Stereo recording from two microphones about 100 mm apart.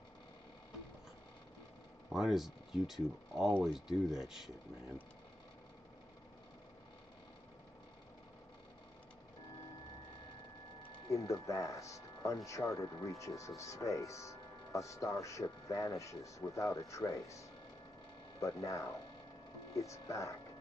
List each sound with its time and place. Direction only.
2.1 s speech: 5° right (ahead or behind)
11.1 s speech: 35° left (ahead or behind)